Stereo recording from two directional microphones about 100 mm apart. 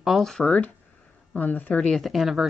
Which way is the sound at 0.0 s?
Centre (ahead or behind).